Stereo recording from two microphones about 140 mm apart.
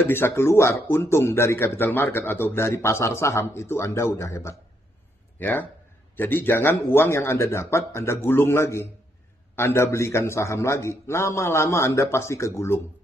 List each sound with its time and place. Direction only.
0.0 s speech: 15° left (ahead or behind)